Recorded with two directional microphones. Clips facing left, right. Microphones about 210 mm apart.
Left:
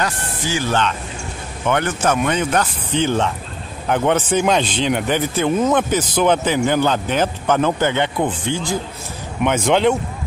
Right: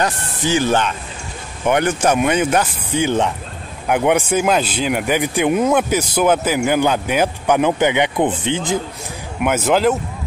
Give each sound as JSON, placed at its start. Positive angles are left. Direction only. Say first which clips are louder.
{"t": 0.0, "sound": "speech", "louder": "right 3 dB", "side_deg": -20}
{"t": 9.4, "sound": "speech", "louder": "even", "side_deg": -5}